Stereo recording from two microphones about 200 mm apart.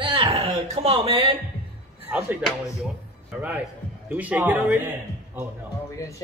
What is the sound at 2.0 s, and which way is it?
Speech, 5° right (ahead or behind).